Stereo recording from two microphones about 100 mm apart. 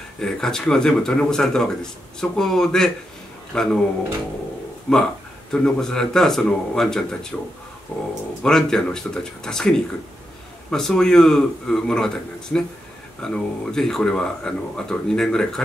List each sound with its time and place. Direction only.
0.2 s speech: 5° left (ahead or behind)
4.9 s speech: 10° left (ahead or behind)
7.9 s speech: 15° left (ahead or behind)
8.4 s speech: 5° left (ahead or behind)